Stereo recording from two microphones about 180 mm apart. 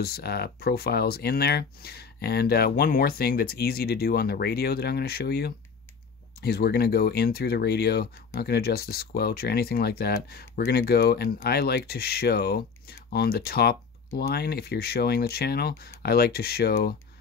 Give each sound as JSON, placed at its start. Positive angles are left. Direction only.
{"t": 0.0, "sound": "speech", "side_deg": 60}